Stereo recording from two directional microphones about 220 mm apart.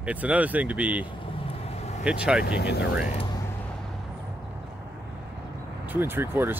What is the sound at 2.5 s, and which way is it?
Speech, 50° left (ahead or behind).